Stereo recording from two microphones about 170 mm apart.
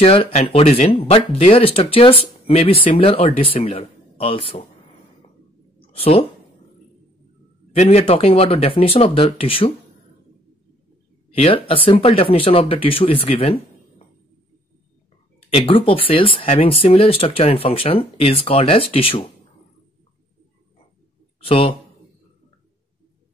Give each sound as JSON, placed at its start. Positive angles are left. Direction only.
{"t": 0.0, "sound": "speech", "side_deg": 35}
{"t": 5.9, "sound": "speech", "side_deg": 35}
{"t": 7.7, "sound": "speech", "side_deg": 40}
{"t": 11.3, "sound": "speech", "side_deg": 35}
{"t": 15.5, "sound": "speech", "side_deg": 35}
{"t": 21.5, "sound": "speech", "side_deg": 35}